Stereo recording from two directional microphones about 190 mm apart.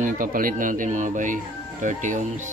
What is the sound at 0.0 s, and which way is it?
Speech, 45° right (ahead or behind).